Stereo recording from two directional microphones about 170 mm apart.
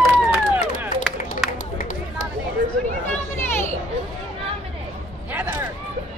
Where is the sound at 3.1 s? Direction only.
15° left (ahead or behind).